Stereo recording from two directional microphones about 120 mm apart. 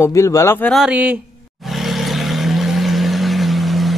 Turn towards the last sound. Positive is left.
turn(degrees=0)  # may be behind; listen again after turning